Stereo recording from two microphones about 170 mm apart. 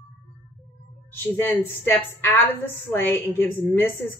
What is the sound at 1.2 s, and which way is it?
A woman's voice, 10° left (ahead or behind).